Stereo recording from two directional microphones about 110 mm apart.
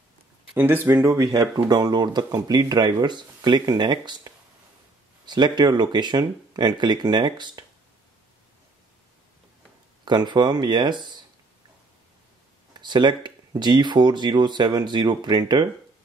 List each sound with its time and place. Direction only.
0.6 s speech: 20° right (ahead or behind)
1.1 s speech: 35° right (ahead or behind)
10.0 s speech: 40° right (ahead or behind)
12.7 s speech: 45° right (ahead or behind)